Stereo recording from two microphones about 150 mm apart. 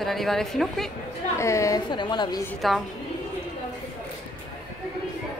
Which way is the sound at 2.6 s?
Centre (ahead or behind).